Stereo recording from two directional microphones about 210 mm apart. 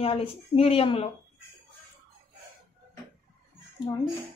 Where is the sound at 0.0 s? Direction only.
25° left (ahead or behind).